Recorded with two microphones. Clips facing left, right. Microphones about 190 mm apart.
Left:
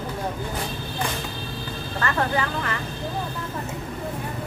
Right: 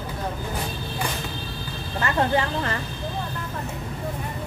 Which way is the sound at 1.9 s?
20° right (ahead or behind).